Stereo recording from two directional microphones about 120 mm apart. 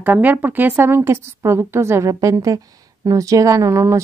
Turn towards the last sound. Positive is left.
turn(degrees=-25)  # may be behind; listen again after turning